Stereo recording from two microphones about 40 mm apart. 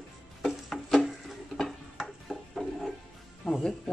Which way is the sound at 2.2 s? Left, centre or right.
Centre.